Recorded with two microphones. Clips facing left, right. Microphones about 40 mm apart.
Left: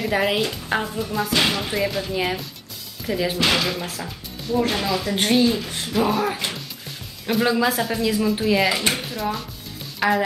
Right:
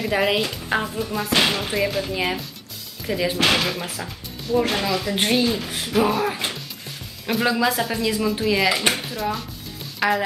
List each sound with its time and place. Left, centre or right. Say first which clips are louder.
0.0 s speech: even; centre
1.3 s speech: right 2 dB; right
1.7 s speech: right 1 dB; centre
3.3 s speech: right 1 dB; right
3.6 s speech: even; centre
4.6 s a sound: even; centre
6.1 s speech: even; centre